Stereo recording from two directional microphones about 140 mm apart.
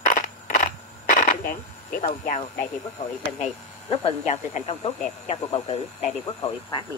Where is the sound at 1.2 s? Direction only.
80° left.